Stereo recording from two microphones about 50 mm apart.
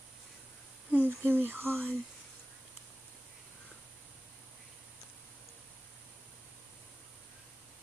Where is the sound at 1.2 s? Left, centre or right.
Right.